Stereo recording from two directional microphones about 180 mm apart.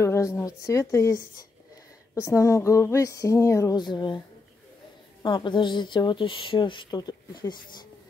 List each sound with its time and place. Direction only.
0.0 s speech: 15° left (ahead or behind)
2.1 s speech: 20° left (ahead or behind)
5.2 s speech: 25° left (ahead or behind)